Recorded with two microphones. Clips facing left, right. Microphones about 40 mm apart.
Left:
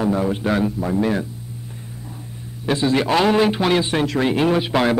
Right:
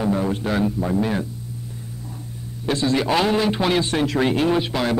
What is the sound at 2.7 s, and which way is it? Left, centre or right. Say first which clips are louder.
A man's voice: left 2 dB; centre.